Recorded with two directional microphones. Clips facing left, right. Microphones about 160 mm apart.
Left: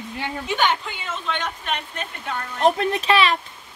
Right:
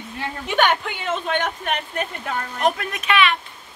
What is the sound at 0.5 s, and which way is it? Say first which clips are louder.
A woman's voice: right 3 dB; 65° right (ahead or behind).